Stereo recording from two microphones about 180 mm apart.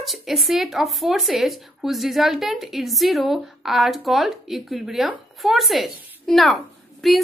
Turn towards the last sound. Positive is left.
turn(degrees=0)  # may be behind; listen again after turning